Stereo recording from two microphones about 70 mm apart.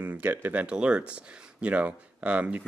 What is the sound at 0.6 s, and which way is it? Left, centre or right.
Speech, centre.